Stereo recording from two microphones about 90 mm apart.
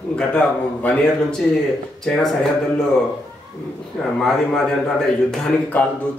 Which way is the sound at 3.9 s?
5° left (ahead or behind).